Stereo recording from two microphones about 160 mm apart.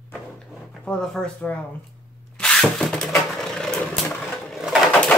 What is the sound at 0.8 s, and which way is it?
Speech, 5° left (ahead or behind).